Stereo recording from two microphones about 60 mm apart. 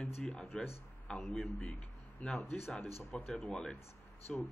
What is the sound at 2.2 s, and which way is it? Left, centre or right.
Speech, left.